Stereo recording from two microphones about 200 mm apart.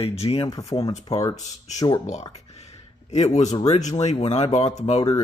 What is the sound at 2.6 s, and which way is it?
Speech, 35° left (ahead or behind).